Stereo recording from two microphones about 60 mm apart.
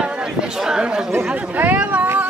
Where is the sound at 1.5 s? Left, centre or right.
Right.